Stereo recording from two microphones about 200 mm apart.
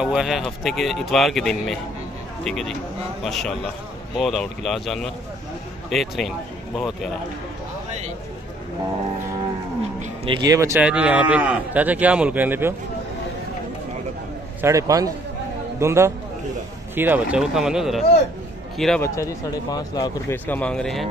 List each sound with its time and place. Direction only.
0.0 s speech: 5° right (ahead or behind)
9.9 s speech: 25° right (ahead or behind); by 12.7 s 10° right (ahead or behind)
14.6 s speech: 15° right (ahead or behind); by 19.0 s centre (ahead or behind)
19.0 s speech: 15° left (ahead or behind)